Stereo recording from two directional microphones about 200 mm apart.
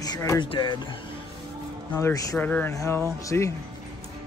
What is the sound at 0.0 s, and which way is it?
Speech, 15° left (ahead or behind).